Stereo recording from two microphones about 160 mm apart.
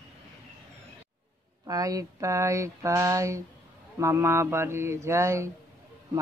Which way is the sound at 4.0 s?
15° right (ahead or behind).